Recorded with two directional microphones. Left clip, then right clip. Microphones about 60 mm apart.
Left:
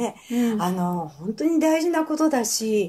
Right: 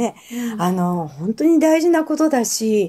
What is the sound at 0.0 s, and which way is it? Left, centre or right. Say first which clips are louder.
Speech: right 1 dB; right.